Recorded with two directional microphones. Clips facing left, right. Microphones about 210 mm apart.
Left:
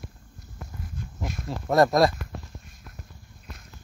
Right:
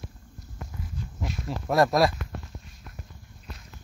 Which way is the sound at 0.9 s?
50° left (ahead or behind).